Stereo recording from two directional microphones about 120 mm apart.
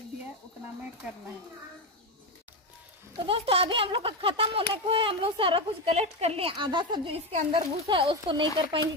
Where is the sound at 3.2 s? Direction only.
50° right (ahead or behind).